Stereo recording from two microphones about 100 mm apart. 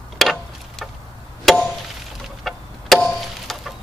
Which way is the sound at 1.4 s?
Centre (ahead or behind).